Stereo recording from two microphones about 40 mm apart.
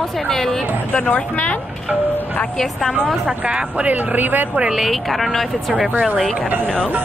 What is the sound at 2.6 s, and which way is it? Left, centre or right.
Speech, centre.